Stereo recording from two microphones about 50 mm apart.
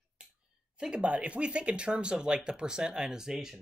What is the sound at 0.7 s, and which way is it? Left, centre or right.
Speech, centre.